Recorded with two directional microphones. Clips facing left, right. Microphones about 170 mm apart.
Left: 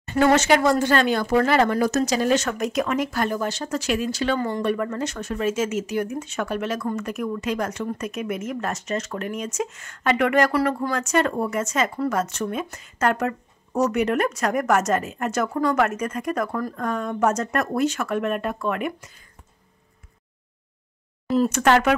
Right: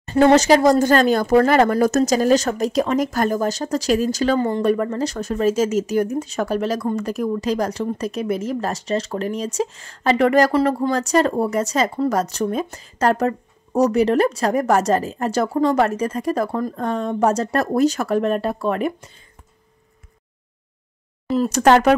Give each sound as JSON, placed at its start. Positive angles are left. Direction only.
{"t": 0.0, "sound": "speech", "side_deg": -30}
{"t": 21.5, "sound": "speech", "side_deg": -35}